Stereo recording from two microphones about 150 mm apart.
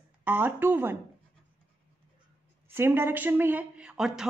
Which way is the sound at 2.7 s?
15° right (ahead or behind).